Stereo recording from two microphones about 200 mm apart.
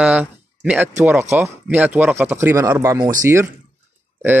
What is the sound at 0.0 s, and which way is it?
Speech, 5° right (ahead or behind).